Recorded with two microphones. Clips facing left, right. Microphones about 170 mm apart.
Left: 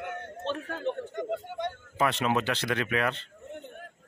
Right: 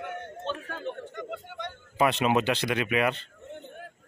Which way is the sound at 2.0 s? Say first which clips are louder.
Right 3 dB; 15° right (ahead or behind).